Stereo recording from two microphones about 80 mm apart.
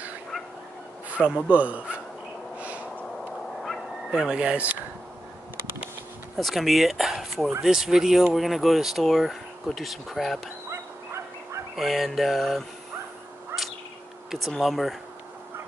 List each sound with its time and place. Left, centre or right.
1.1 s a man's voice: centre
2.6 s snort: centre
4.1 s a man's voice: centre
6.3 s speech: centre
10.7 s dog: right
11.7 s speech: centre
13.5 s bird: right
14.6 s speech: centre